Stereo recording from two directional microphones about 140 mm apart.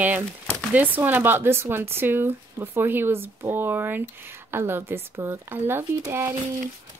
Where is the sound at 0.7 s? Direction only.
15° right (ahead or behind).